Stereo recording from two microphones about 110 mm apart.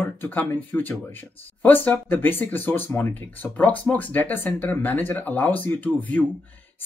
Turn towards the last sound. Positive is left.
turn(degrees=15)  # may be behind; listen again after turning